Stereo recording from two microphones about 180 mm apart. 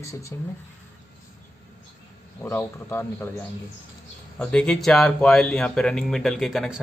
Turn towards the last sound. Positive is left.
turn(degrees=0)  # may be behind; listen again after turning